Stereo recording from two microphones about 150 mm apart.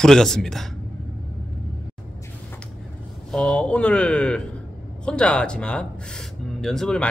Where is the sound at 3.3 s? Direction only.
5° left (ahead or behind).